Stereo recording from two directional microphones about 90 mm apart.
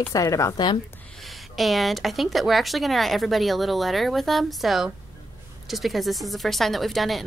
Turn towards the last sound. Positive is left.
turn(degrees=0)  # may be behind; listen again after turning